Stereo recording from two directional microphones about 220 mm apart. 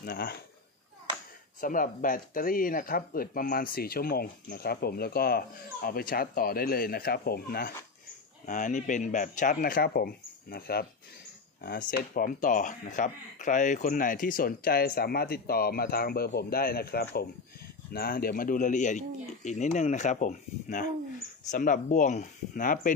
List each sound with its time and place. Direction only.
0.0 s speech: 45° left (ahead or behind)
1.6 s speech: 40° left (ahead or behind)